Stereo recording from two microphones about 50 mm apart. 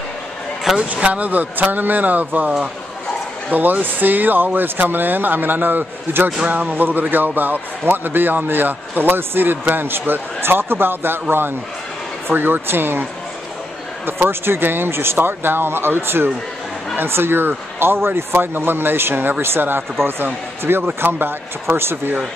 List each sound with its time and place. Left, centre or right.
0.7 s speech: centre
1.0 s speech: right
14.2 s speech: right
20.8 s speech: right